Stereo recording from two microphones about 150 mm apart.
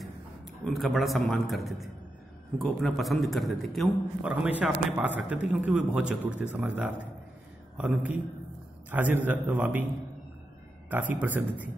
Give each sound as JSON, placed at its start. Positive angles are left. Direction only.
{"t": 0.7, "sound": "a man's voice", "side_deg": 0}
{"t": 4.3, "sound": "a man's voice", "side_deg": -10}
{"t": 10.9, "sound": "a man's voice", "side_deg": -10}